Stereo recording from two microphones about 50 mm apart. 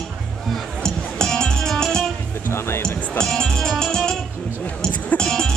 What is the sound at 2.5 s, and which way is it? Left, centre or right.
Music, left.